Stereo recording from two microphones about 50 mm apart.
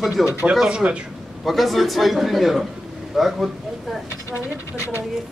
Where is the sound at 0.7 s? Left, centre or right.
Right.